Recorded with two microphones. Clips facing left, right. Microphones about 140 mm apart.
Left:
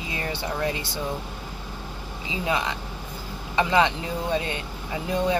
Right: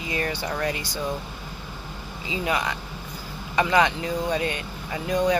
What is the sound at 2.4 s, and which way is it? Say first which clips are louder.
Speech: even; 25° left (ahead or behind).